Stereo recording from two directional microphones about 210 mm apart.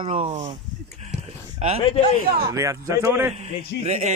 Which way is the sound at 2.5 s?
15° right (ahead or behind).